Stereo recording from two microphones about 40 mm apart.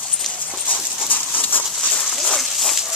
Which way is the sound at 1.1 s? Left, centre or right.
Left.